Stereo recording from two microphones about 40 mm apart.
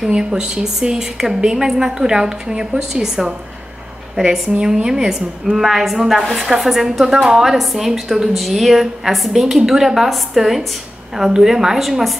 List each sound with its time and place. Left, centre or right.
0.1 s a woman's voice: centre